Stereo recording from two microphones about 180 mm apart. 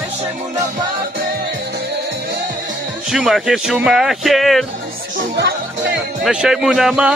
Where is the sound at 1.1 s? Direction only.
60° right (ahead or behind).